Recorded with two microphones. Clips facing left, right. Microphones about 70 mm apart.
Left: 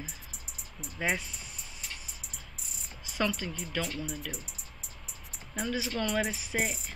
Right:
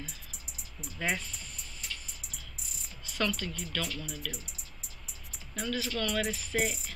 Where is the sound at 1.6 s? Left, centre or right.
Centre.